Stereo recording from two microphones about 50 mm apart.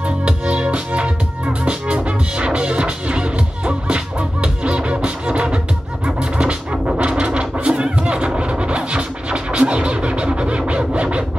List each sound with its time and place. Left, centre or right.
0.2 s music: right
6.0 s scratching: right
7.8 s music: right